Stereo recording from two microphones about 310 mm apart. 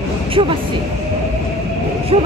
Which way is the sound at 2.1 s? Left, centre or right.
Centre.